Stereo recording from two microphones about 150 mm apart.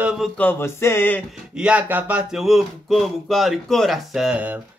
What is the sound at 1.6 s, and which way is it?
Speech, 10° right (ahead or behind).